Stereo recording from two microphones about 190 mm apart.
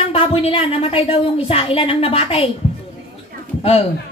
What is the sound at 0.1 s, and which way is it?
A woman's voice, 30° left (ahead or behind).